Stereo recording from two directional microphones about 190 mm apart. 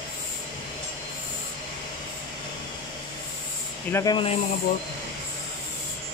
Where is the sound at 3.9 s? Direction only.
20° left (ahead or behind).